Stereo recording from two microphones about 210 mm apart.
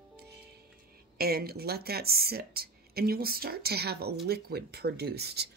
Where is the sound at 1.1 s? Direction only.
45° right (ahead or behind).